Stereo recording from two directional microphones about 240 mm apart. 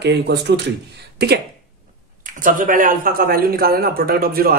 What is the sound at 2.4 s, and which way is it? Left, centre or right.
A man's voice, right.